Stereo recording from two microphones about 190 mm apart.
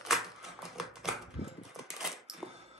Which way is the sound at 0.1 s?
Centre (ahead or behind).